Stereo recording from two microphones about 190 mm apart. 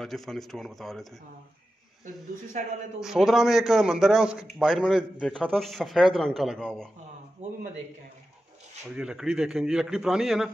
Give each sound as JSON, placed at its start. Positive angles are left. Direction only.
{"t": 0.0, "sound": "a man's voice", "side_deg": 0}
{"t": 3.0, "sound": "a man's voice", "side_deg": 0}
{"t": 7.4, "sound": "a man's voice", "side_deg": -40}
{"t": 8.9, "sound": "a man's voice", "side_deg": -5}